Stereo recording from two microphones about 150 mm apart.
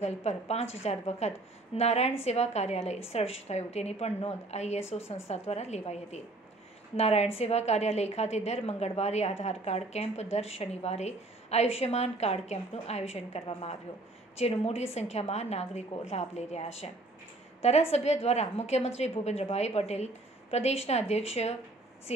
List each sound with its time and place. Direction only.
0.0 s a woman's voice: 45° left (ahead or behind)